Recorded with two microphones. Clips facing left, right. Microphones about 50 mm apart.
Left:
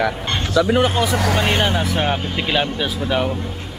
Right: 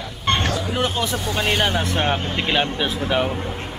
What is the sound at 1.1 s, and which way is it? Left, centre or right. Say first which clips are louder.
Speech: left 6 dB; left.